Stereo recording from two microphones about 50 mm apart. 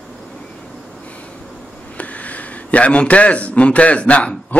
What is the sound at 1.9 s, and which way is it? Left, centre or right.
Speech, left.